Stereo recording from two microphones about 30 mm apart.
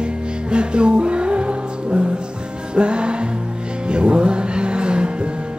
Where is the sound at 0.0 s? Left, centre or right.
Right.